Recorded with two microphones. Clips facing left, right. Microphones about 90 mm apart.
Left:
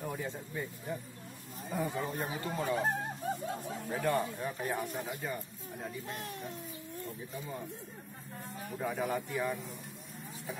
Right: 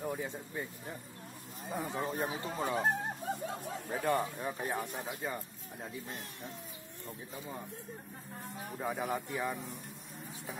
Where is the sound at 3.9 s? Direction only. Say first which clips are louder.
Even; 15° right (ahead or behind).